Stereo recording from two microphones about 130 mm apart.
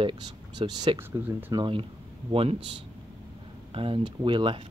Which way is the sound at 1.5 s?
40° right (ahead or behind).